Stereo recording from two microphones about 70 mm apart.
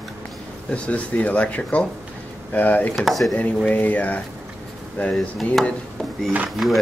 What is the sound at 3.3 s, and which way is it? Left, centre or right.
Speech, left.